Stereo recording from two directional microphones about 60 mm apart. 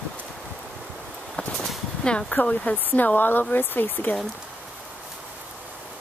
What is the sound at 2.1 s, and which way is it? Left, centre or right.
Speech, centre.